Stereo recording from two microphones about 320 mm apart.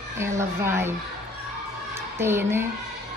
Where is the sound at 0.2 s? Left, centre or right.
Centre.